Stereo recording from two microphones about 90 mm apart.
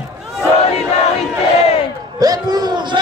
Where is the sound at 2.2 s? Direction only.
45° right (ahead or behind).